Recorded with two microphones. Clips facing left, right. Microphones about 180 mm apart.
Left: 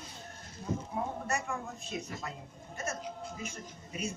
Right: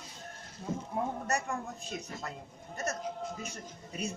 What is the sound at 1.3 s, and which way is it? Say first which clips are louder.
A woman's voice: right 2 dB; 40° right (ahead or behind).